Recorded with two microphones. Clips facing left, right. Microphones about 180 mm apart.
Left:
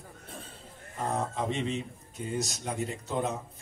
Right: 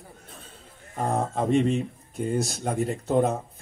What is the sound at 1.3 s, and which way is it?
Speech, 50° right (ahead or behind).